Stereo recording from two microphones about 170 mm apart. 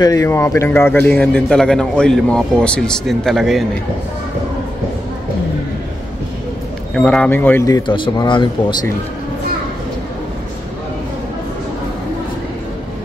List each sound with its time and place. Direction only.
0.0 s a man's voice: 20° left (ahead or behind); by 3.6 s centre (ahead or behind)
7.0 s speech: 5° left (ahead or behind); by 8.7 s 25° left (ahead or behind)